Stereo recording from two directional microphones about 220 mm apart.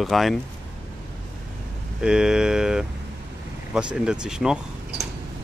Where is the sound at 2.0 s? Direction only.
5° right (ahead or behind).